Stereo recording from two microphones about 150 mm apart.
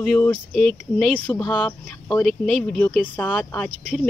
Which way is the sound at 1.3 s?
30° left (ahead or behind).